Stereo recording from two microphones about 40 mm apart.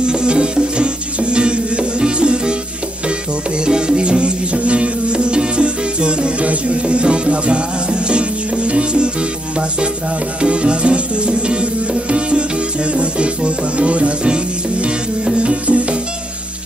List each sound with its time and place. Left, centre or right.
0.0 s music: right
3.6 s music: right
10.4 s music: right